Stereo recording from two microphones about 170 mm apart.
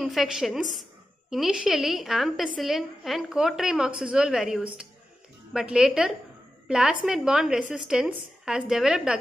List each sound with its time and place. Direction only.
0.0 s a woman's voice: centre (ahead or behind)